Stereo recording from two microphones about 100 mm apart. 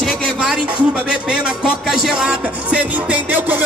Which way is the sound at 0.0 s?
5° right (ahead or behind).